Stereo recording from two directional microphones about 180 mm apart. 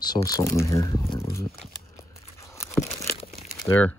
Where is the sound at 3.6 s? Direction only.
10° left (ahead or behind).